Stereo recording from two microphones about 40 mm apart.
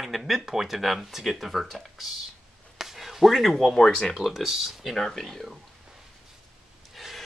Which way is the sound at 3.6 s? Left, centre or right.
Centre.